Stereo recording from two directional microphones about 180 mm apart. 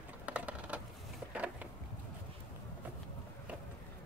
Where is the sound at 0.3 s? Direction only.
10° right (ahead or behind).